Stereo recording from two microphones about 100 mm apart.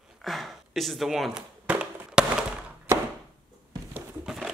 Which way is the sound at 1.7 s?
15° right (ahead or behind).